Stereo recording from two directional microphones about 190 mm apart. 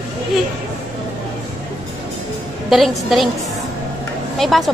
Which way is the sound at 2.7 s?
Centre (ahead or behind).